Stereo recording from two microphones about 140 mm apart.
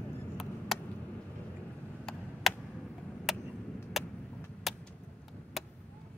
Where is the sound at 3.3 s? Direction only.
Centre (ahead or behind).